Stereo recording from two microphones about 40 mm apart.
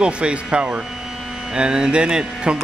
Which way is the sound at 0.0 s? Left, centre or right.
Right.